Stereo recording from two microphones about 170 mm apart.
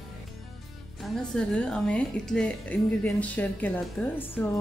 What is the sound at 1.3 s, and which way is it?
A woman's voice, 5° left (ahead or behind).